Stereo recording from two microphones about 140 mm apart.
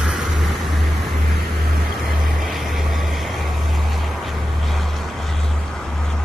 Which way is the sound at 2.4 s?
Centre (ahead or behind).